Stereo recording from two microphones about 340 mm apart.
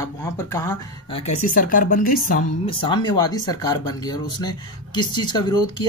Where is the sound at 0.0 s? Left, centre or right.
Centre.